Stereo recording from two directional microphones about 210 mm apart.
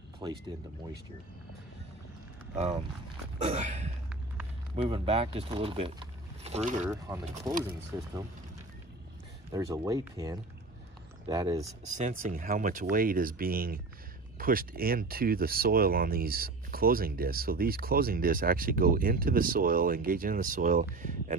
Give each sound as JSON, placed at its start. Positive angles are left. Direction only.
{"t": 0.2, "sound": "speech", "side_deg": -20}
{"t": 3.3, "sound": "a sound", "side_deg": -35}
{"t": 4.7, "sound": "speech", "side_deg": -25}
{"t": 6.9, "sound": "speech", "side_deg": -15}
{"t": 9.5, "sound": "speech", "side_deg": -15}
{"t": 11.8, "sound": "speech", "side_deg": -35}